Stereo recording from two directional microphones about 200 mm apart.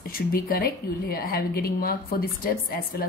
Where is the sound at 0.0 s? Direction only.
45° left (ahead or behind).